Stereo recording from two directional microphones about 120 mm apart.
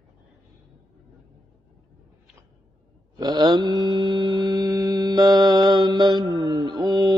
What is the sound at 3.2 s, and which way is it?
Mantra, 35° right (ahead or behind).